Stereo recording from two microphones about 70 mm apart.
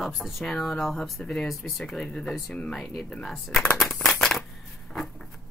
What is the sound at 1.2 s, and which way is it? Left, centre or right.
Speech, centre.